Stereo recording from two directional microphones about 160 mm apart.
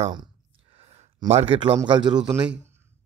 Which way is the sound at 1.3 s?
35° right (ahead or behind).